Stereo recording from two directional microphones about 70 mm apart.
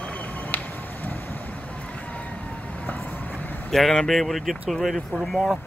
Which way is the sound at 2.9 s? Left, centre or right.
Left.